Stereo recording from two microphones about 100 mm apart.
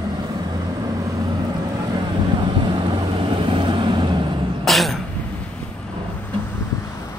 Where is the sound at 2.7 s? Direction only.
55° right (ahead or behind).